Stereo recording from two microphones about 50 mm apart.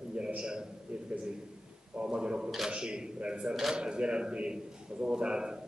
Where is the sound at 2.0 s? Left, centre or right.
Centre.